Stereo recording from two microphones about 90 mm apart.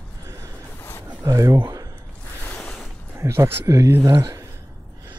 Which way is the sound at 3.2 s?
30° right (ahead or behind).